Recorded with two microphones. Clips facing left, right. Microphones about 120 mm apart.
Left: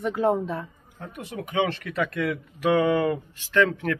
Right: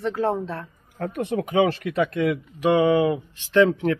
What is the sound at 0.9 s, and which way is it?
Speech, 65° right (ahead or behind).